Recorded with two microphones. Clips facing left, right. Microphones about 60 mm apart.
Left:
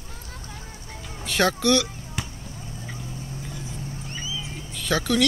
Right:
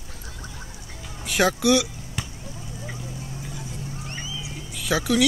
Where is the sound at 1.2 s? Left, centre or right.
Centre.